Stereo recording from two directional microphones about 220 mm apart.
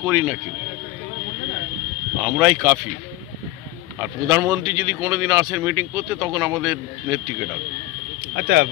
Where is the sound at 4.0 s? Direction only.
10° right (ahead or behind).